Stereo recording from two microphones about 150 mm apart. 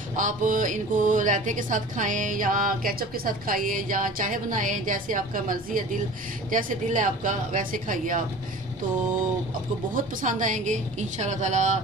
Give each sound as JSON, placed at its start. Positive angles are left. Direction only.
{"t": 0.1, "sound": "speech", "side_deg": -60}
{"t": 9.9, "sound": "a woman's voice", "side_deg": -60}